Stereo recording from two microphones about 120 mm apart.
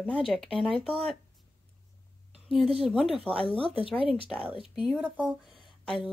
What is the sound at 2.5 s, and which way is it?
Speech, 5° right (ahead or behind).